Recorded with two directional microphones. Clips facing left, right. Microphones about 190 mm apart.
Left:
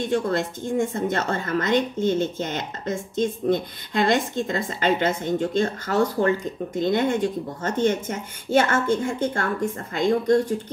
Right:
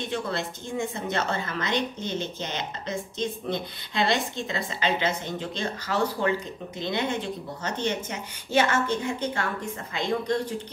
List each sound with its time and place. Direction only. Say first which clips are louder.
0.0 s a woman's voice: left 7 dB; 50° left (ahead or behind)